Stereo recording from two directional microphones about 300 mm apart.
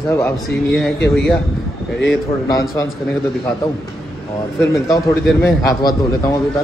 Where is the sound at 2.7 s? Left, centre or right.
Centre.